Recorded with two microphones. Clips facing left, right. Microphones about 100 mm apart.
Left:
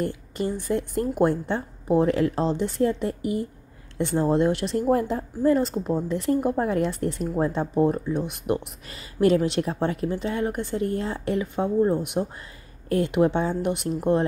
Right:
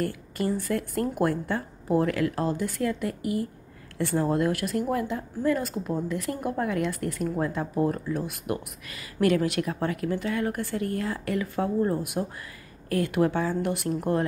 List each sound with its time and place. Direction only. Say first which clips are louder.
0.0 s speech: left 1 dB; 20° left (ahead or behind)